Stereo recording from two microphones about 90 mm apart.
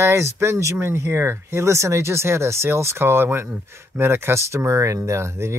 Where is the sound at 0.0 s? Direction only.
30° right (ahead or behind).